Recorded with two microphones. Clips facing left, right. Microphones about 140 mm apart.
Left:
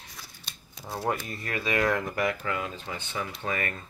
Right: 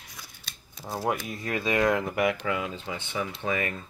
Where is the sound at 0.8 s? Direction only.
5° right (ahead or behind).